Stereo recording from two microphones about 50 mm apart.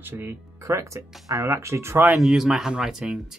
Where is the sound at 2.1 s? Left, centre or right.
Centre.